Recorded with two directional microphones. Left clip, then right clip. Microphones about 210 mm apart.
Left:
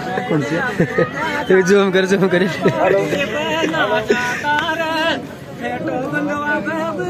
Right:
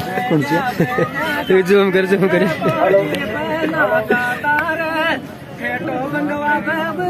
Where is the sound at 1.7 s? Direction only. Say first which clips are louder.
Even; 10° left (ahead or behind).